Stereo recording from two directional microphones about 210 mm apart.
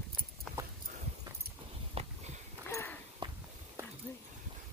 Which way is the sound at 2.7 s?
15° left (ahead or behind).